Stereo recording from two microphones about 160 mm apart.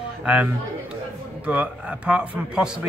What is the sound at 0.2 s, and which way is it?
A man's voice, 5° right (ahead or behind).